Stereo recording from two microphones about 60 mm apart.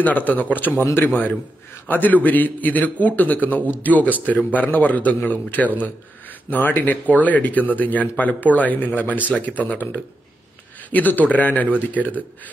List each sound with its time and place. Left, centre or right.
0.0 s a man's voice: left
1.9 s a man's voice: left